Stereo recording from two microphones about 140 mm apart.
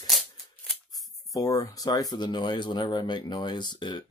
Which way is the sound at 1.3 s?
25° left (ahead or behind).